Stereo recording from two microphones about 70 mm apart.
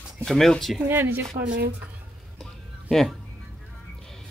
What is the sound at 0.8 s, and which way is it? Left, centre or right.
Speech, right.